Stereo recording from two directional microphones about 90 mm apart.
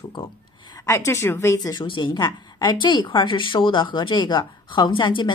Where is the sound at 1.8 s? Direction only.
65° left (ahead or behind).